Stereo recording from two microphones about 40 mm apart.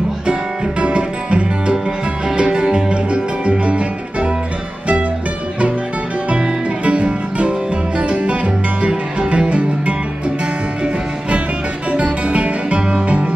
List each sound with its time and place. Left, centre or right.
0.3 s music: right
6.3 s music: right
11.9 s music: right